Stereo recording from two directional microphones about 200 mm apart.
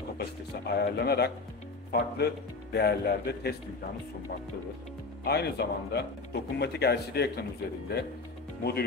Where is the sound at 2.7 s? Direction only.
55° left (ahead or behind).